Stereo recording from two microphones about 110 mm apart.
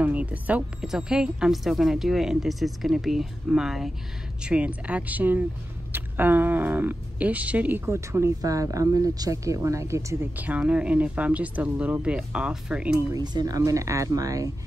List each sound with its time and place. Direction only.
0.0 s speech: 15° right (ahead or behind)
7.8 s speech: 25° right (ahead or behind)
10.3 s speech: 15° right (ahead or behind)
13.1 s speech: 40° right (ahead or behind)